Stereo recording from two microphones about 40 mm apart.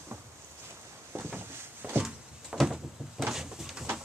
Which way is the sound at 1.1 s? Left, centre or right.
Right.